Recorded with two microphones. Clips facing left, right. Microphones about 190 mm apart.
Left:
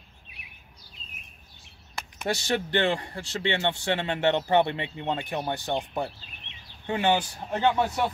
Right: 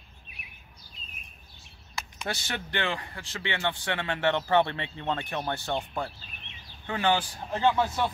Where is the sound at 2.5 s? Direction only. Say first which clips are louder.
Left 8 dB; 30° left (ahead or behind).